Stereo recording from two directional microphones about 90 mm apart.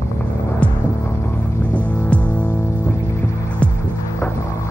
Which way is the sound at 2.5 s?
35° left (ahead or behind).